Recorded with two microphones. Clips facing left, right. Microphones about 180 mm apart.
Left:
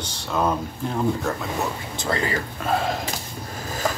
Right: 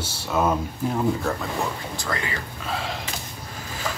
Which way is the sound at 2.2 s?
45° left (ahead or behind).